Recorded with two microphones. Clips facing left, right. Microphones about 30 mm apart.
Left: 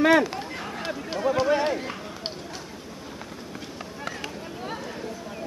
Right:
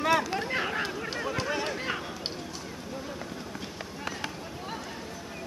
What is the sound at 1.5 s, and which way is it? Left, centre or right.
Run, centre.